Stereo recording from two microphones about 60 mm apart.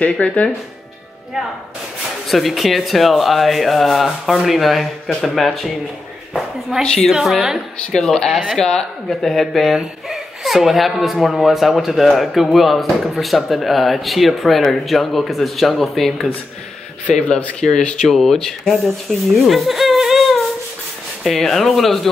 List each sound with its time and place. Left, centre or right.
0.2 s speech: left
2.2 s speech: centre
7.9 s speech: centre
17.6 s speech: centre
19.4 s a sound: centre
21.2 s speech: centre